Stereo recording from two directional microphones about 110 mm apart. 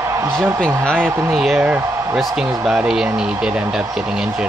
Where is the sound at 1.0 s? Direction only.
20° right (ahead or behind).